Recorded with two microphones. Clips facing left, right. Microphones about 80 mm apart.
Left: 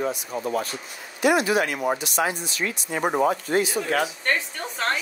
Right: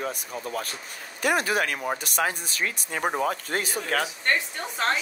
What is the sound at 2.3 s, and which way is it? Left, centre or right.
Speech, right.